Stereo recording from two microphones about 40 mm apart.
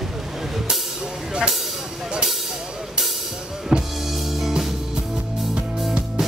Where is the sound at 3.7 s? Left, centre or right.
Centre.